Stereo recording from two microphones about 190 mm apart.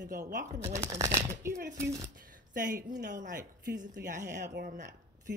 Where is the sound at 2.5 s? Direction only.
45° right (ahead or behind).